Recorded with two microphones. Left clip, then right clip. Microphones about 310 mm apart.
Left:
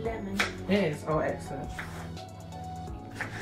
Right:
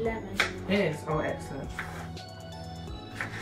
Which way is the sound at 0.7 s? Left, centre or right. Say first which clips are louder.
Even; centre.